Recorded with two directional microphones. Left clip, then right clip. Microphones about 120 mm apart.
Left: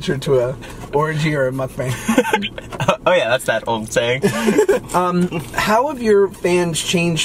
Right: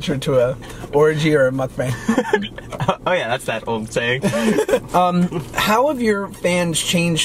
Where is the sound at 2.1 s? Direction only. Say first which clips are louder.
Left 3 dB; 15° left (ahead or behind).